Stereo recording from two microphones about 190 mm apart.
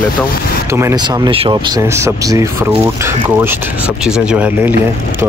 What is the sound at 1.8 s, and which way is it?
Speech, 15° right (ahead or behind).